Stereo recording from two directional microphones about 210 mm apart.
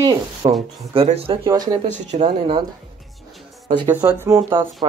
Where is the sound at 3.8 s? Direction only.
10° right (ahead or behind).